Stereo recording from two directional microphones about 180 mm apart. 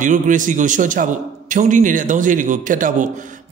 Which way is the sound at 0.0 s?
45° right (ahead or behind).